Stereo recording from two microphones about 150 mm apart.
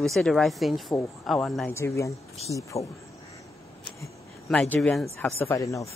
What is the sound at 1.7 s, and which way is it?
Speech, 20° left (ahead or behind).